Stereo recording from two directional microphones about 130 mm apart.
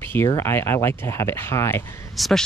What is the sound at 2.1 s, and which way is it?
Speech, centre (ahead or behind).